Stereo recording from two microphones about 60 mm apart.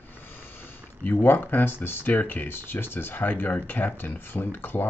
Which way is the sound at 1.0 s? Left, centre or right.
Left.